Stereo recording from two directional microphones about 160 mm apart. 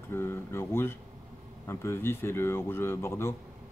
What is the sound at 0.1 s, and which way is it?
Speech, 15° left (ahead or behind).